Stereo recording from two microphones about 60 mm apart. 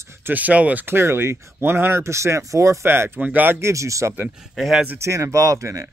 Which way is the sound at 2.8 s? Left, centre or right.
Right.